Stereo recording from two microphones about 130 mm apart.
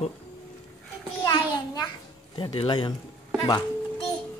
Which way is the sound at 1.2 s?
30° left (ahead or behind).